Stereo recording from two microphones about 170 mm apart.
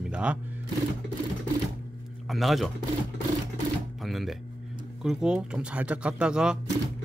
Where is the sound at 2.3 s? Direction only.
Centre (ahead or behind).